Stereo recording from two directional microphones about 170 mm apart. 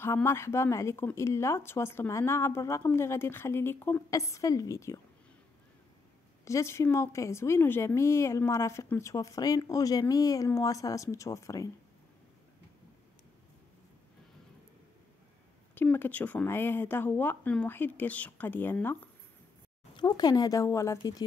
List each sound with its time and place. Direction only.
0.0 s a woman's voice: 15° left (ahead or behind)
6.4 s a woman's voice: 15° left (ahead or behind)
15.7 s a woman's voice: 10° left (ahead or behind)
20.0 s speech: 25° left (ahead or behind)